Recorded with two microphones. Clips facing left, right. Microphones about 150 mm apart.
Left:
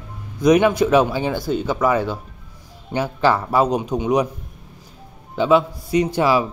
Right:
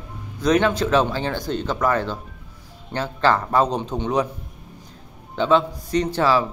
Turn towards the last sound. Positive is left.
turn(degrees=15)  # may be behind; listen again after turning